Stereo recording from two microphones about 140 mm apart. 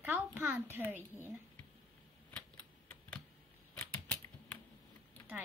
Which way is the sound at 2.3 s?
10° left (ahead or behind).